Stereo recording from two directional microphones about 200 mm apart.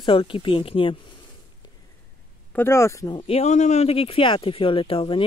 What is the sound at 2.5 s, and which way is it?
Speech, 10° left (ahead or behind).